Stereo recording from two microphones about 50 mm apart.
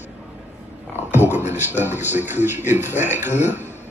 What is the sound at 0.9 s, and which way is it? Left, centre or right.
Speech, right.